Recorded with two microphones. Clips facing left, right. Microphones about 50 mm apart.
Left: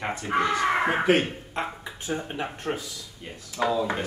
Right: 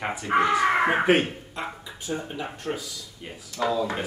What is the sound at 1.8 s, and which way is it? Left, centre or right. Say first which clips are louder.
Speech: left 1 dB; left.